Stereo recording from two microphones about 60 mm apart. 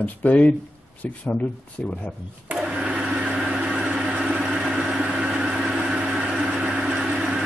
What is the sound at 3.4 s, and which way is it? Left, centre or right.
Vehicle, centre.